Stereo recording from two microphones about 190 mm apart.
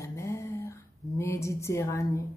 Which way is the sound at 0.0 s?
15° left (ahead or behind).